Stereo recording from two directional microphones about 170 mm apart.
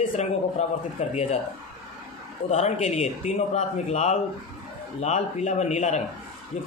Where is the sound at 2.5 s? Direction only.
40° left (ahead or behind).